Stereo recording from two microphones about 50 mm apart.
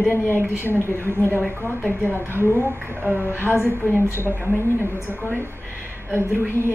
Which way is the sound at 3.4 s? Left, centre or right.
Left.